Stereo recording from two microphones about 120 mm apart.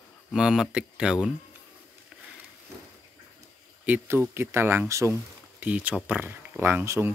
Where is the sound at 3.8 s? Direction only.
15° right (ahead or behind).